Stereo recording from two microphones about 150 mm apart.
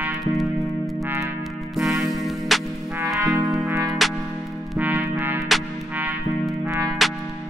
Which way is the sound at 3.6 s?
20° right (ahead or behind).